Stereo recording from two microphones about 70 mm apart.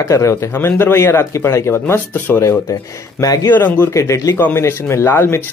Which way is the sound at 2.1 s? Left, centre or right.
Left.